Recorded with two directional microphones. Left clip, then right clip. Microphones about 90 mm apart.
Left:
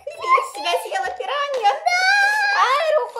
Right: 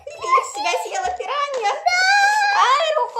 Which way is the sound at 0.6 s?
35° right (ahead or behind).